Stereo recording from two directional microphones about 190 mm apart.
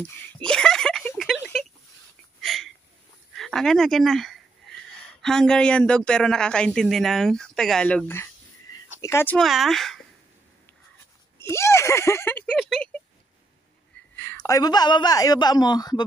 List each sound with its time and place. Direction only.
0.0 s a sound: 5° left (ahead or behind)
5.2 s speech: 5° left (ahead or behind)
11.3 s speech: 15° left (ahead or behind)
14.1 s a woman's voice: 15° left (ahead or behind)